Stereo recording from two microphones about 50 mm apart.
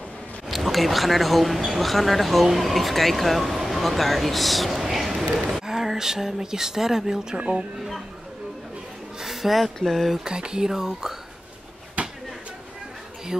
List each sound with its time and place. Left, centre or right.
0.5 s speech: centre
9.2 s a sound: centre
9.8 s speech: centre
10.2 s speech: centre
12.0 s a sound: right
13.3 s speech: centre